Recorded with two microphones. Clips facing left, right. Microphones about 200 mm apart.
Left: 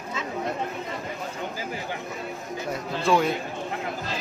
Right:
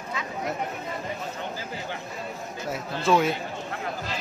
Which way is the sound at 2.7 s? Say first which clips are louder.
Even; centre (ahead or behind).